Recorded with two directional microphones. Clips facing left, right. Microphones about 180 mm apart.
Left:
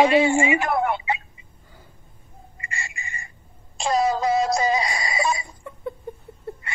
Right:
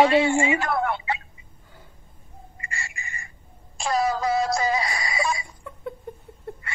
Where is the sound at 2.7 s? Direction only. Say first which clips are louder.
Left 1 dB; 20° left (ahead or behind).